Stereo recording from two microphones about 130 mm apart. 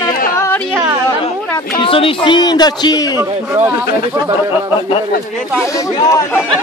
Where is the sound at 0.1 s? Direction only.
90° left.